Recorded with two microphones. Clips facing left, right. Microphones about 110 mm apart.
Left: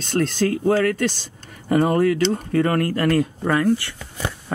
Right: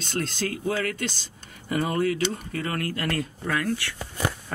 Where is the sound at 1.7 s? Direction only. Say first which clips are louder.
Left 7 dB; 45° left (ahead or behind).